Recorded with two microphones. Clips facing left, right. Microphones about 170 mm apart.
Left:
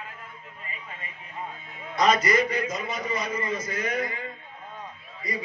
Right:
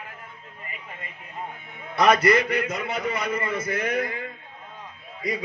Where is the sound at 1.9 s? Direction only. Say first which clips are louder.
Right 3 dB; 65° right (ahead or behind).